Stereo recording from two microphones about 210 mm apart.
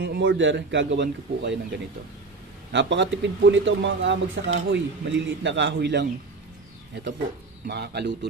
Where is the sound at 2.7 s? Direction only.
60° right (ahead or behind).